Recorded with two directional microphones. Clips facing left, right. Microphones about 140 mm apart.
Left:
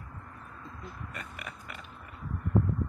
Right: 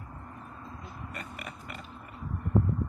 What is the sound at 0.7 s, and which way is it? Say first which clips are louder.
Oink: left 1 dB; 5° right (ahead or behind).